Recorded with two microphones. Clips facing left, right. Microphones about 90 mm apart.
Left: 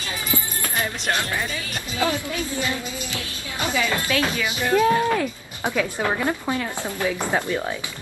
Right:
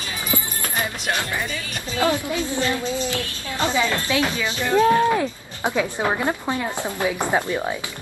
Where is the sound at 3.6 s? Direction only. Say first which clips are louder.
Right 2 dB; 25° right (ahead or behind).